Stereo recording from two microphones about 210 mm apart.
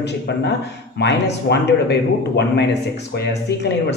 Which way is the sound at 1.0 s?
55° left (ahead or behind).